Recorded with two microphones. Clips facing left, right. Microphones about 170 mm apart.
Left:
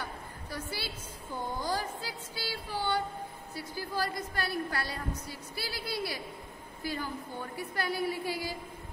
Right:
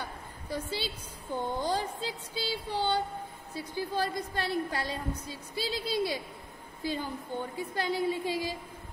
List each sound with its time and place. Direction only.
0.5 s a woman's voice: 20° right (ahead or behind)